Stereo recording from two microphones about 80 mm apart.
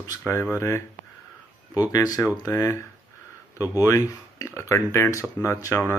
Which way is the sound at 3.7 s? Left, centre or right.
Left.